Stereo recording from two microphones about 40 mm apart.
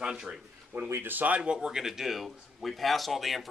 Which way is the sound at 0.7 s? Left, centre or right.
Right.